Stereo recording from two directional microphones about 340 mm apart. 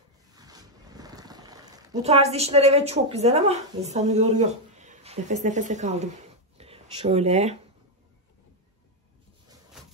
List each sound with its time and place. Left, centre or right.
0.3 s speech: centre